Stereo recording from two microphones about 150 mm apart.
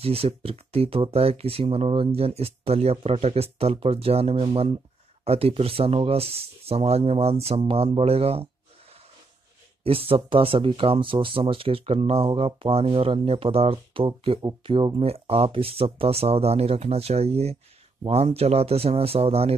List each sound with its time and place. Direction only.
0.0 s speech: 40° right (ahead or behind)
9.8 s speech: 40° right (ahead or behind)